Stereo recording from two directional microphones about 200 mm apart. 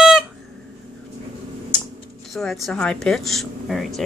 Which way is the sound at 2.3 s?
Centre (ahead or behind).